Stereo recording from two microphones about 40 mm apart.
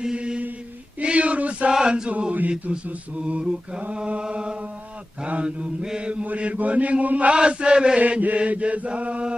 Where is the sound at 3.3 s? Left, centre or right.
Right.